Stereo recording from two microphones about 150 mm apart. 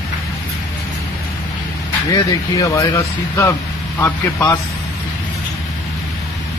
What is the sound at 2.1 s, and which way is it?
Speech, 25° left (ahead or behind).